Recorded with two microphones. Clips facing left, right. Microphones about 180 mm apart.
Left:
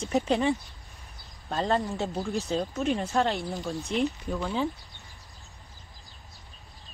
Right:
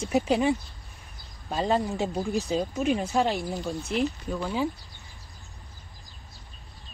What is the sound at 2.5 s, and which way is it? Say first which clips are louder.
Speech: right 1 dB; 10° right (ahead or behind).